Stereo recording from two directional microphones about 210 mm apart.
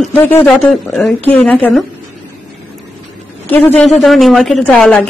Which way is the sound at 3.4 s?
10° left (ahead or behind).